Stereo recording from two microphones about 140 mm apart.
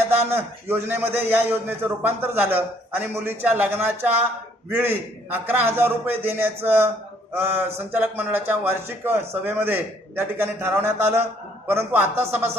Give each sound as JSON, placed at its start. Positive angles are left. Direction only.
{"t": 0.1, "sound": "a man's voice", "side_deg": -15}